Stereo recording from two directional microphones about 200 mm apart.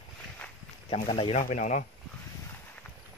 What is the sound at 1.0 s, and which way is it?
Speech, 30° left (ahead or behind).